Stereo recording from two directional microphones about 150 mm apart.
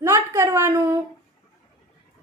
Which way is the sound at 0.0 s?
20° right (ahead or behind).